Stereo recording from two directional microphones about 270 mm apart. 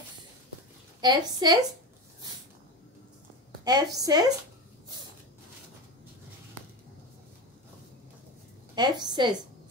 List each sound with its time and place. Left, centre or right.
1.0 s a woman's voice: centre
3.6 s a woman's voice: centre
8.7 s a woman's voice: centre